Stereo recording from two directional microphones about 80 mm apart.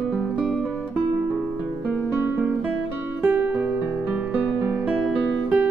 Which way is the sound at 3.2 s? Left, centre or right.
Centre.